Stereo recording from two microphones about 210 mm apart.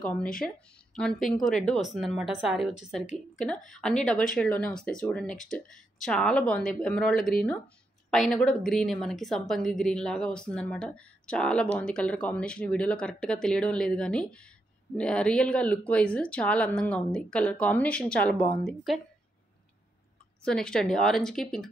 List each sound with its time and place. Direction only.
0.1 s a woman's voice: 5° left (ahead or behind)
20.4 s a woman's voice: 5° left (ahead or behind)